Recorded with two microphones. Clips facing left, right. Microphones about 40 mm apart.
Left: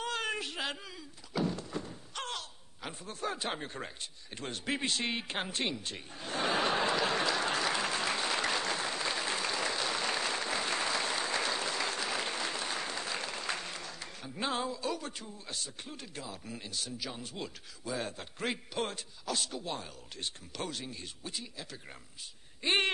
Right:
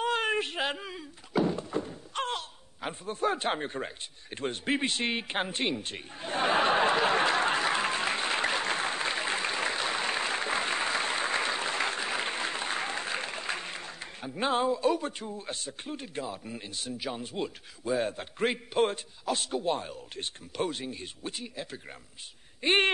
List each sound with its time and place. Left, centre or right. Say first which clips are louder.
0.0 s thunk: right 7 dB; right
2.1 s speech: right 7 dB; right
4.4 s a sound: right 6 dB; right
22.6 s speech: right 5 dB; right